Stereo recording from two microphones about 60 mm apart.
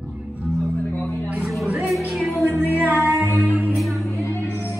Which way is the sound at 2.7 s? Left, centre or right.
Right.